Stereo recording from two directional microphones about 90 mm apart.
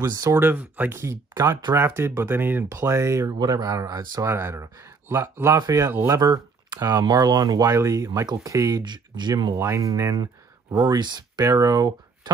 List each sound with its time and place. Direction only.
0.0 s speech: 45° right (ahead or behind)
0.3 s speech: 20° right (ahead or behind)
2.8 s speech: 35° right (ahead or behind)
3.3 s speech: 45° right (ahead or behind)
4.2 s speech: 30° right (ahead or behind); by 9.6 s 50° right (ahead or behind)
9.6 s speech: 30° right (ahead or behind); by 11.4 s 50° right (ahead or behind)
11.4 s speech: 40° right (ahead or behind)